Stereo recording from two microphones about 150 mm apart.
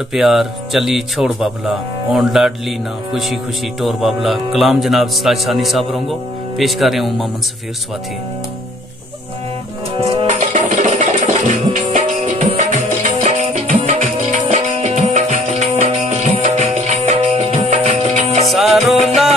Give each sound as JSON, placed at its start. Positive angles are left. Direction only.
{"t": 0.1, "sound": "speech", "side_deg": 0}
{"t": 9.9, "sound": "music", "side_deg": -40}
{"t": 18.5, "sound": "music", "side_deg": 0}